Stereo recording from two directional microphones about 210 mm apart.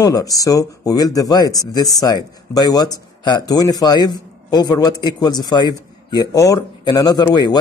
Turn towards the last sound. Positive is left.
turn(degrees=20)  # may be behind; listen again after turning